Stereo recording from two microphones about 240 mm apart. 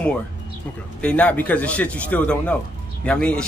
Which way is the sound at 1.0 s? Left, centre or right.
Centre.